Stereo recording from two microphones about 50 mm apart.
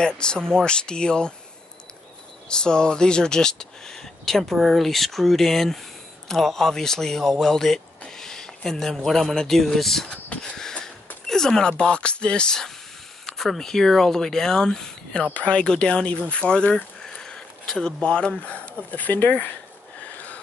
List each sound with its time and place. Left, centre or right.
0.0 s speech: centre
2.4 s speech: centre
10.4 s a sound: centre
11.2 s speech: centre; by 19.5 s left